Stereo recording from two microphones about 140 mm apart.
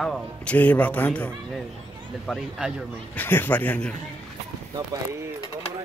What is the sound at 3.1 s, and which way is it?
Speech, 15° left (ahead or behind).